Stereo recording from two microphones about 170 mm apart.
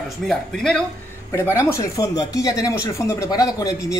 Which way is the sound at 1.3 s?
15° left (ahead or behind).